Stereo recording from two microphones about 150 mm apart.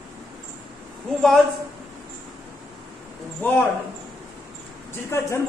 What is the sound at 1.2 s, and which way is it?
Speech, centre (ahead or behind).